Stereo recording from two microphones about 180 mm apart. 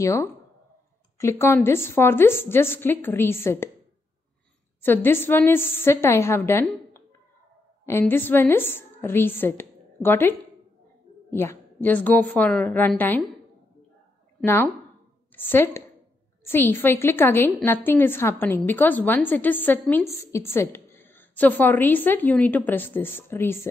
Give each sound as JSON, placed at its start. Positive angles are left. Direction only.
{"t": 0.0, "sound": "a woman's voice", "side_deg": 15}
{"t": 4.8, "sound": "a woman's voice", "side_deg": 10}
{"t": 14.4, "sound": "a woman's voice", "side_deg": 10}